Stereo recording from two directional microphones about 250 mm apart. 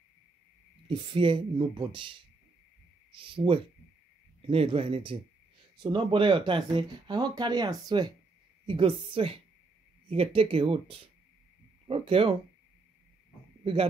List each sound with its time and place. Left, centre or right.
0.8 s speech: centre
3.1 s a sound: right
4.4 s speech: right